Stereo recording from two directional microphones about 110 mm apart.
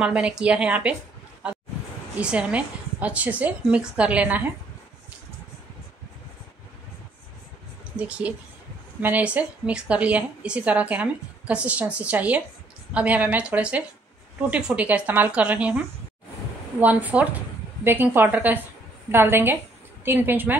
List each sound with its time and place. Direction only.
0.0 s a woman's voice: 10° right (ahead or behind)
2.1 s a woman's voice: 10° right (ahead or behind)
7.9 s a woman's voice: 10° right (ahead or behind)
16.8 s a woman's voice: 15° right (ahead or behind)